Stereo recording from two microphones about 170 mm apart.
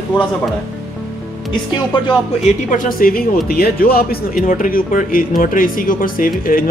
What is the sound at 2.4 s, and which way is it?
Speech, 55° left (ahead or behind).